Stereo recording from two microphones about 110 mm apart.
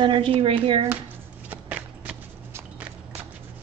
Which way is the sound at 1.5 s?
15° right (ahead or behind).